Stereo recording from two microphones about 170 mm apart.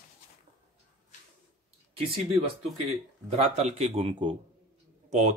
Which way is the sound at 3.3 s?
40° right (ahead or behind).